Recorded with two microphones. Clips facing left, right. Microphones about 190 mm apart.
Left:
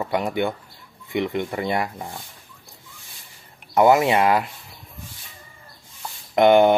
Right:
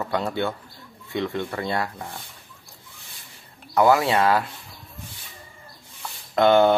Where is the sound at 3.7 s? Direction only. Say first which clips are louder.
Left 2 dB; 20° left (ahead or behind).